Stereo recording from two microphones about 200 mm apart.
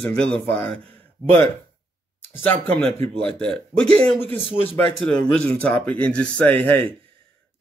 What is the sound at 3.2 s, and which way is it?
Speech, 5° left (ahead or behind).